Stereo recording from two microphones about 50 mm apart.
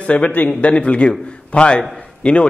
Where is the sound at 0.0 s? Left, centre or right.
Left.